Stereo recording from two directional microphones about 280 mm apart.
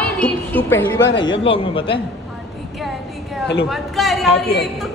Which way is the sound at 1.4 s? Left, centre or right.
Centre.